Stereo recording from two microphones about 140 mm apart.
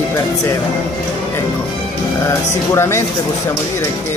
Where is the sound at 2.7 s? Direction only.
20° left (ahead or behind).